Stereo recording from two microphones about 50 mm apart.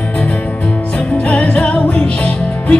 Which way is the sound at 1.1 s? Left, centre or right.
Left.